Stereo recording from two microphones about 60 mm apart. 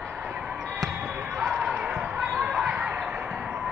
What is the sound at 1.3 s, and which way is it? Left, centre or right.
Basketball bounce, centre.